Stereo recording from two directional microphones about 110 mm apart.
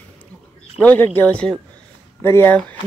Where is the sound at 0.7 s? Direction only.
15° left (ahead or behind).